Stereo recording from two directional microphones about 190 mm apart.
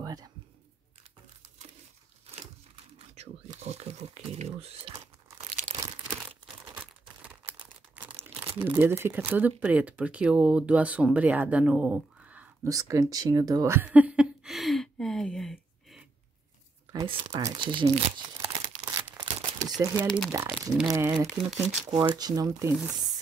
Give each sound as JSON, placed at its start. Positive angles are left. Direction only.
{"t": 0.0, "sound": "a sound", "side_deg": -20}
{"t": 2.7, "sound": "crumpling", "side_deg": -30}
{"t": 5.8, "sound": "crumpling", "side_deg": -10}
{"t": 7.9, "sound": "crumpling", "side_deg": -10}
{"t": 8.6, "sound": "speech", "side_deg": -10}
{"t": 16.9, "sound": "crumpling", "side_deg": -25}
{"t": 20.0, "sound": "speech", "side_deg": 5}
{"t": 20.2, "sound": "speech", "side_deg": -10}
{"t": 20.9, "sound": "speech", "side_deg": -20}
{"t": 21.5, "sound": "speech", "side_deg": 0}
{"t": 21.9, "sound": "speech", "side_deg": -20}